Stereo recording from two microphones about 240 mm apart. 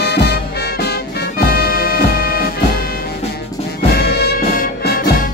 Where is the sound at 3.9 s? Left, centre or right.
Left.